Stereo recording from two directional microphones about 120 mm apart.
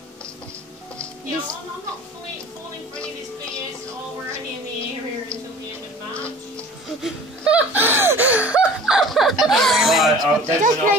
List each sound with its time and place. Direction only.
3.0 s music: 10° left (ahead or behind)
7.0 s gasp: 10° right (ahead or behind)
10.4 s speech: 90° right